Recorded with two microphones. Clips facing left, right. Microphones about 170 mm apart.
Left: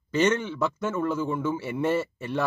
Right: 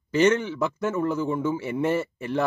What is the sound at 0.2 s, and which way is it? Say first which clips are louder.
A man's voice: right 3 dB; 10° right (ahead or behind).